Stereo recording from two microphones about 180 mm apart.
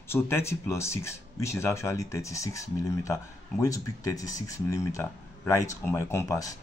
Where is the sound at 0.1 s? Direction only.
15° left (ahead or behind).